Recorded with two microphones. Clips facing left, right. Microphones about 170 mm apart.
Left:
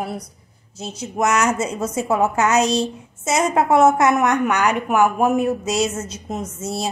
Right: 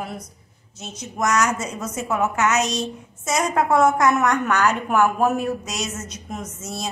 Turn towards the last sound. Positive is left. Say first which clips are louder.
# left 5 dB
turn(degrees=30)  # may be behind; listen again after turning